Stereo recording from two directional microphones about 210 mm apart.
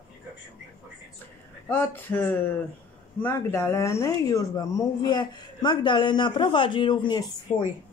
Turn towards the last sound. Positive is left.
turn(degrees=20)  # may be behind; listen again after turning